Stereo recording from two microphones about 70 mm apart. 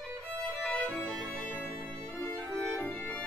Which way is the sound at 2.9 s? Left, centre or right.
Left.